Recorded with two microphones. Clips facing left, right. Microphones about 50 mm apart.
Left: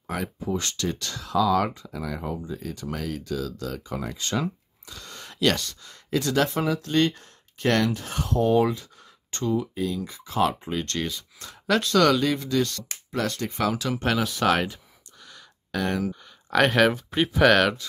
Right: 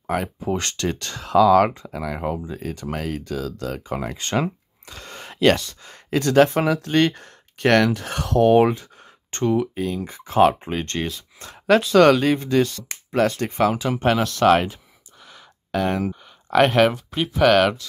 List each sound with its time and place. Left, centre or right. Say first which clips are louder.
0.0 s speech: right 6 dB; right
5.9 s speech: right 4 dB; right
6.6 s speech: right 4 dB; right
8.5 s speech: right 6 dB; right
11.3 s a sound: right 7 dB; right
12.0 s speech: right 5 dB; right
13.7 s speech: right 5 dB; centre
16.0 s a sound: right 3 dB; right
16.5 s speech: right 3 dB; centre